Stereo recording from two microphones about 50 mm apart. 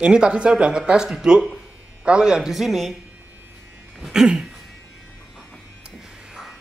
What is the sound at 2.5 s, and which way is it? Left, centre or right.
Speech, centre.